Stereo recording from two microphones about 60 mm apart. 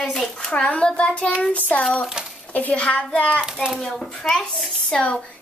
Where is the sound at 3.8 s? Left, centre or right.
Centre.